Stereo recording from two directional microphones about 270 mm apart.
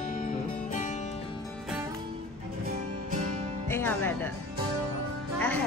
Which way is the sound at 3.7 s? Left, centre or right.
Centre.